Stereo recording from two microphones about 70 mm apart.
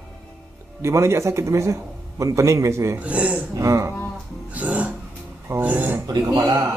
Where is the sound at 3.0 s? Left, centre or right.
Centre.